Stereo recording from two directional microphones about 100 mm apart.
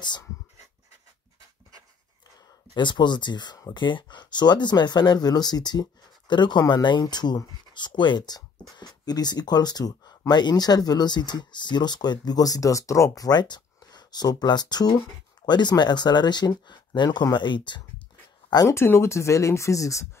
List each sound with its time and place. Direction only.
2.7 s speech: 50° left (ahead or behind)
18.8 s speech: 25° left (ahead or behind)